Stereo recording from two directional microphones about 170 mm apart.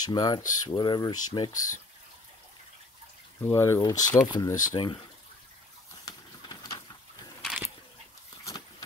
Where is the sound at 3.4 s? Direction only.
15° left (ahead or behind).